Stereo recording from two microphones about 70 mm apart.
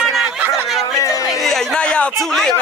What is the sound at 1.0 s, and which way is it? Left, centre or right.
Speech, left.